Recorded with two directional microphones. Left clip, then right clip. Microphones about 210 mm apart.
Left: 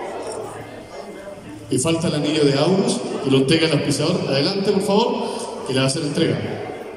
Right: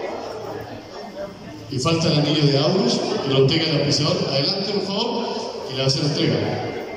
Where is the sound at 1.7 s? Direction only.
55° left (ahead or behind).